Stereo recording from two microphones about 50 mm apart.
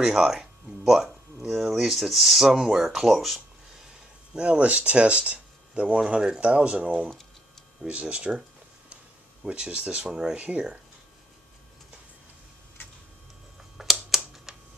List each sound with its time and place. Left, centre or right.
0.0 s speech: centre
4.3 s speech: right
10.3 s speech: right
13.8 s typewriter: centre
14.1 s a sound: centre